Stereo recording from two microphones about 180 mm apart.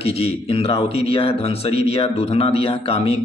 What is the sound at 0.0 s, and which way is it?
A man's voice, 35° left (ahead or behind).